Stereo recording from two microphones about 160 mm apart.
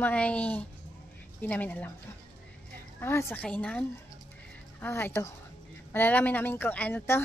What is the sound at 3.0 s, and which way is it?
Speech, 15° left (ahead or behind).